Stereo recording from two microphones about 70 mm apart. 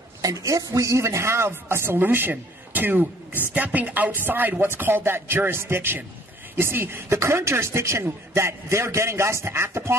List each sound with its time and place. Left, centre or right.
0.2 s speech: right
3.5 s music: right
4.3 s speech: right